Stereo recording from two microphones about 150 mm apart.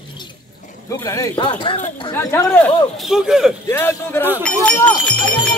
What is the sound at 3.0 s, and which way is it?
Speech, 5° right (ahead or behind).